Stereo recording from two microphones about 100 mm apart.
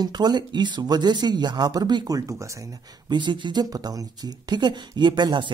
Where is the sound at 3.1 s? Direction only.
50° right (ahead or behind).